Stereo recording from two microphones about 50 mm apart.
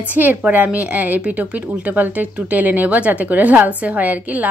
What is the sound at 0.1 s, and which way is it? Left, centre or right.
A woman's voice, right.